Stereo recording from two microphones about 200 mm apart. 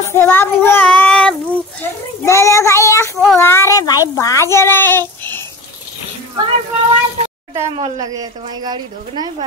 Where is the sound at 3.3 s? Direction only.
15° left (ahead or behind).